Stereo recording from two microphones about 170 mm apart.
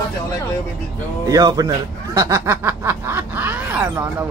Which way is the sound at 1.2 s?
20° right (ahead or behind).